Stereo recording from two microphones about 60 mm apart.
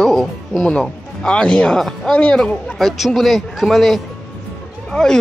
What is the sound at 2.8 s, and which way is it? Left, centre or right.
A man's voice, centre.